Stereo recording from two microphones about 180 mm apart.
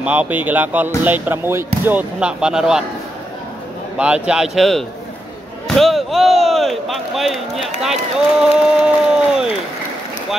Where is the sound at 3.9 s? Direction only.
5° right (ahead or behind).